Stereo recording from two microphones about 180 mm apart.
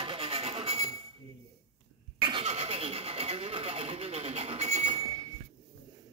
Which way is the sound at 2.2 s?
30° right (ahead or behind).